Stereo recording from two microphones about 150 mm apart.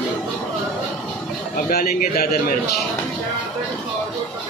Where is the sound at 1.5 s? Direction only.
70° left (ahead or behind).